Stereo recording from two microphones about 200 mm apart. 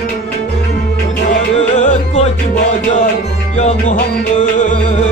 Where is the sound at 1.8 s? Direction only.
35° left (ahead or behind).